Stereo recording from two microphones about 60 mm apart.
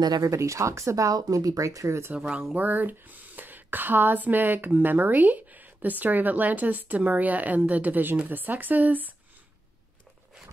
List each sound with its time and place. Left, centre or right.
0.2 s speech: right
2.1 s speech: centre
2.6 s speech: right